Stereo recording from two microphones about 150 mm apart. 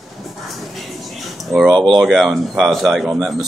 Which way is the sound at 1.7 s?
30° right (ahead or behind).